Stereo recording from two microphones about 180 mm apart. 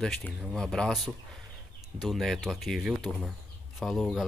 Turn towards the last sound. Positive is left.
turn(degrees=0)  # may be behind; listen again after turning